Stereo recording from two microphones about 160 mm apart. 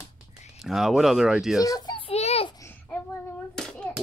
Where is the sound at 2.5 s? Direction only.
20° left (ahead or behind).